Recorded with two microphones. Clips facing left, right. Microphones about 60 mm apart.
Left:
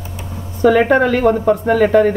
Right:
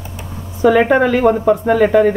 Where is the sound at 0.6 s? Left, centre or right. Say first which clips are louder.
Even; centre.